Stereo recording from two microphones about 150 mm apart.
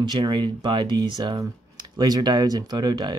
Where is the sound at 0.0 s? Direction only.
30° right (ahead or behind).